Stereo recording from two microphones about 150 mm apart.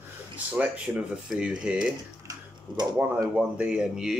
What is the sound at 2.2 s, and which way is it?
Tick-tock, 25° right (ahead or behind).